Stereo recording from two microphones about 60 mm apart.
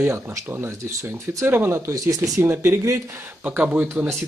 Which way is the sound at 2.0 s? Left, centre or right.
Right.